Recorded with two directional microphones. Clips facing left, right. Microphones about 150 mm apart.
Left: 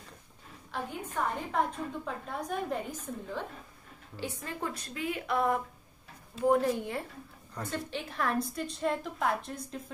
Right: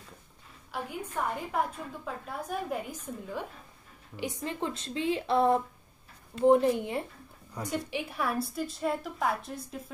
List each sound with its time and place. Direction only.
0.7 s a woman's voice: 10° right (ahead or behind)